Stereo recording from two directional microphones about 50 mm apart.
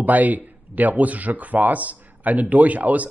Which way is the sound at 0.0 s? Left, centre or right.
Right.